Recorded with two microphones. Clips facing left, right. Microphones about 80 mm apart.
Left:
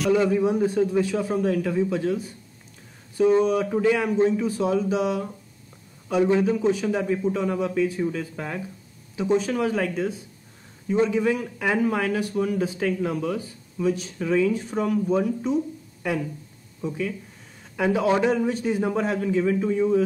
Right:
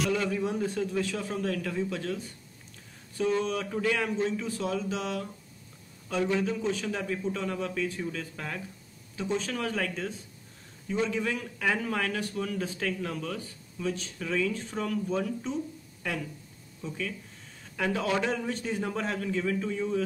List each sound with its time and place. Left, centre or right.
0.1 s speech: centre